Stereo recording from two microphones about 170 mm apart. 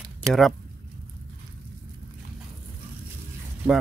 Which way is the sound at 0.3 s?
Centre (ahead or behind).